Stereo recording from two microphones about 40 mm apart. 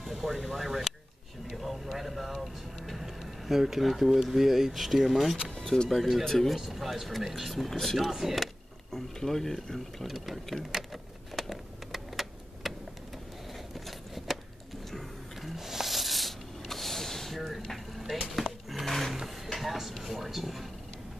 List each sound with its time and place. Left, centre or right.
0.0 s speech: centre
5.5 s vehicle: centre
5.9 s speech: centre
6.5 s speech: centre
7.7 s speech: centre
8.1 s speech: centre
8.9 s speech: centre
10.0 s a sound: centre
13.7 s a sound: centre
15.5 s a sound: centre
17.5 s vehicle: centre
18.7 s a sound: centre